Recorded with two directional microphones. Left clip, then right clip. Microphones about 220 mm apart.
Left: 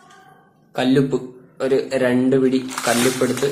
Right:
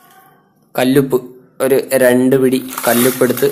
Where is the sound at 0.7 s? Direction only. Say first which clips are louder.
Right 5 dB; 40° right (ahead or behind).